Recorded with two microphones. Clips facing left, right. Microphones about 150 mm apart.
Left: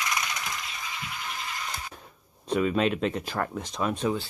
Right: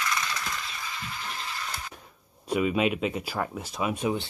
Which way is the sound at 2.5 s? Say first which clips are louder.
Even; 10° right (ahead or behind).